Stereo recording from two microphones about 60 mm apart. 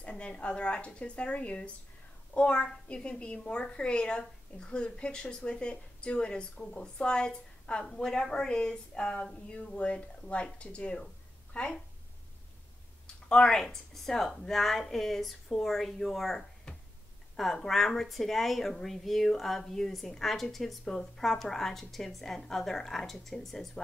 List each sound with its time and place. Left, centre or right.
0.0 s a woman's voice: centre
13.0 s speech: centre